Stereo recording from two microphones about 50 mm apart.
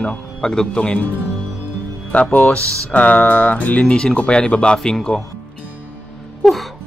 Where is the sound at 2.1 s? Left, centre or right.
Left.